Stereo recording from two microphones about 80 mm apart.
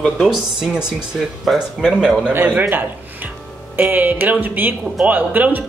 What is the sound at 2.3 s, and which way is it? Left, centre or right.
Speech, right.